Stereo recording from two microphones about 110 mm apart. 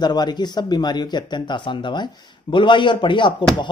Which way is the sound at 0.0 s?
40° left (ahead or behind).